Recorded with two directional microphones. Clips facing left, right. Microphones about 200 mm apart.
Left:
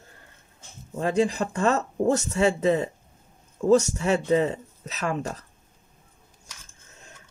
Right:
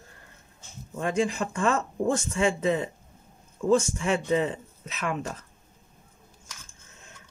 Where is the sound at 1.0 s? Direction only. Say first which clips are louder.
Left 3 dB; 35° left (ahead or behind).